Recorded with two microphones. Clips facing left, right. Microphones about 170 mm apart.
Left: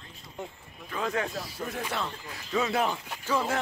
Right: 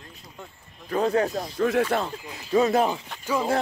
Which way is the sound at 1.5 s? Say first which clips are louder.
Right 18 dB; 90° right.